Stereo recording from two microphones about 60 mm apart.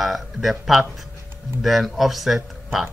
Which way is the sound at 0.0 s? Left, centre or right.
Centre.